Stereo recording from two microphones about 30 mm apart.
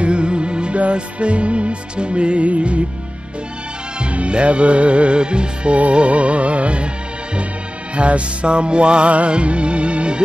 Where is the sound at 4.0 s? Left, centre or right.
Right.